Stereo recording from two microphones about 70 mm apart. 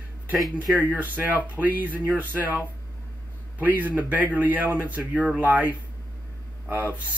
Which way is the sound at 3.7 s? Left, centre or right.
Right.